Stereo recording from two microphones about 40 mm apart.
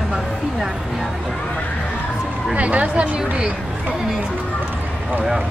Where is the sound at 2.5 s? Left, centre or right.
Right.